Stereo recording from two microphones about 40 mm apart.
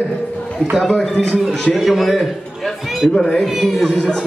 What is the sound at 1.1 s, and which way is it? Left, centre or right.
Speech, centre.